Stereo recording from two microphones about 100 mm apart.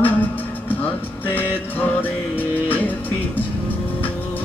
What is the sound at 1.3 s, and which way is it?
Music, 20° left (ahead or behind).